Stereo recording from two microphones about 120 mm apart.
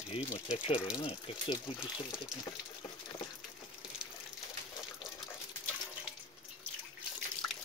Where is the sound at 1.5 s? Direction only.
40° left (ahead or behind).